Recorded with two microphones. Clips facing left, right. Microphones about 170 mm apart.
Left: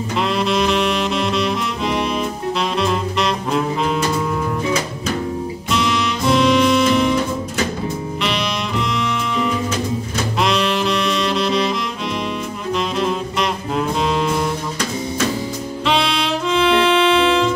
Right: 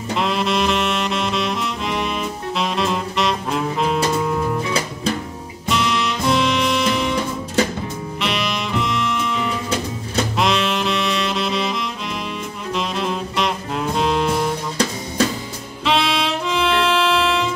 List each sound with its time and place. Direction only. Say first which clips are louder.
0.1 s saxophone: left 1 dB; centre (ahead or behind)
5.7 s music: even; centre (ahead or behind)
8.2 s music: even; centre (ahead or behind)
10.4 s saxophone: left 3 dB; centre (ahead or behind)
12.7 s saxophone: left 3 dB; centre (ahead or behind)
15.8 s music: even; centre (ahead or behind)